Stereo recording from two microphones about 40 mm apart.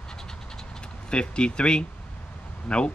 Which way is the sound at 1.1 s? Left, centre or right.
Left.